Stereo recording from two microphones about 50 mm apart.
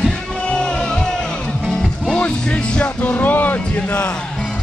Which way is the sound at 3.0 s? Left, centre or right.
Left.